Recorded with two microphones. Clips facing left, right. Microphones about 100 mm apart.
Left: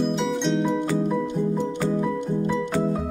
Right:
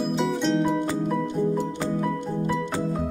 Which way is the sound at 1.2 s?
15° left (ahead or behind).